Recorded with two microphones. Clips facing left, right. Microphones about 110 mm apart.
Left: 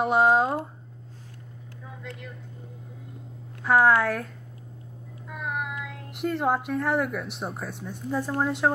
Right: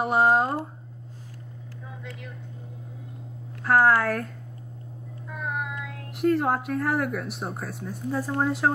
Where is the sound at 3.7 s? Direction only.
Centre (ahead or behind).